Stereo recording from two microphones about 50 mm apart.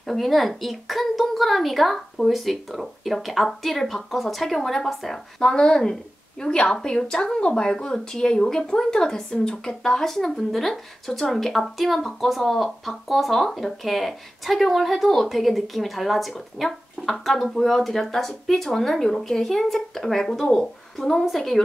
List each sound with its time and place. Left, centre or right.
0.0 s a woman's voice: centre